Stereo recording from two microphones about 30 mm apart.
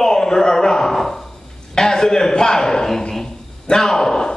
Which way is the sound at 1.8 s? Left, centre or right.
Left.